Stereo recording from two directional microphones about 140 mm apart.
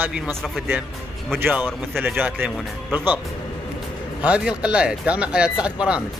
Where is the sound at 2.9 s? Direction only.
15° right (ahead or behind).